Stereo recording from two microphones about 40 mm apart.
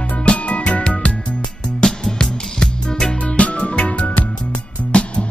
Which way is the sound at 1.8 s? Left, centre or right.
Centre.